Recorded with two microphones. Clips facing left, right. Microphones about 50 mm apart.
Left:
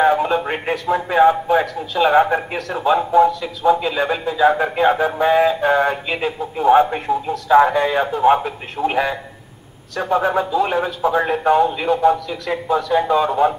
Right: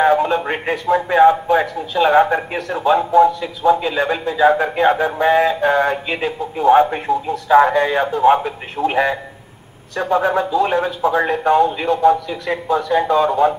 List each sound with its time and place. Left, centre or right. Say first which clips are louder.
0.0 s speech: right 1 dB; centre
3.3 s a man's voice: right 1 dB; centre